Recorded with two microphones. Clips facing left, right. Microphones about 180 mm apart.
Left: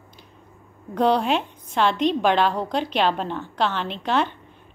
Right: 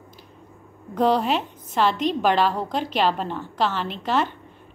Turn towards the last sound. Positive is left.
turn(degrees=-5)  # may be behind; listen again after turning